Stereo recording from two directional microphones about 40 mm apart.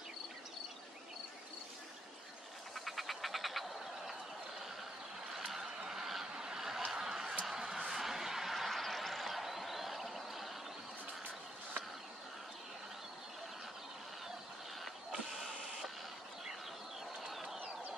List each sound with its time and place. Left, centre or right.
2.7 s frog: centre
5.9 s a sound: centre
17.3 s bird: centre